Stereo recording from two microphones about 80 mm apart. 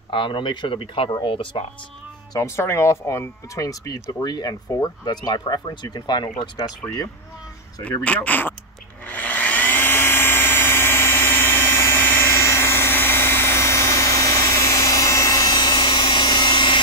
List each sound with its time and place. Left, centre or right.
0.1 s speech: left
2.3 s speech: left
8.0 s speech: centre
9.0 s a sound: left